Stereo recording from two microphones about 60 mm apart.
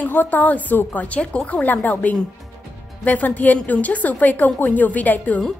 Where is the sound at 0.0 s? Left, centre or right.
Left.